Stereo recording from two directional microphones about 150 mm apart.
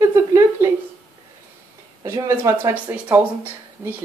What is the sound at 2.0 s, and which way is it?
Speech, 15° right (ahead or behind).